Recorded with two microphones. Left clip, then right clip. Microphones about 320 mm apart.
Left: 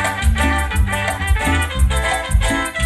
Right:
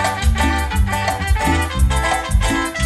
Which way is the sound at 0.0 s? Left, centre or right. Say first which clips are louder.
Even; right.